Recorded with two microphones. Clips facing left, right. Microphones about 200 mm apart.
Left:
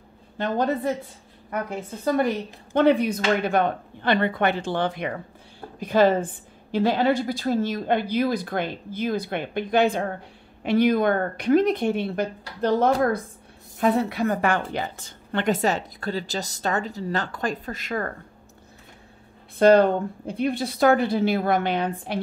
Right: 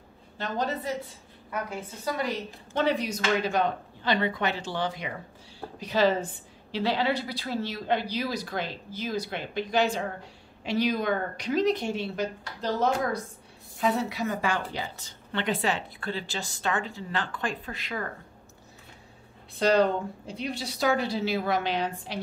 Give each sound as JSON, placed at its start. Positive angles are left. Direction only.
{"t": 0.4, "sound": "a woman's voice", "side_deg": 55}
{"t": 2.0, "sound": "a woman's voice", "side_deg": 55}
{"t": 19.6, "sound": "a woman's voice", "side_deg": 55}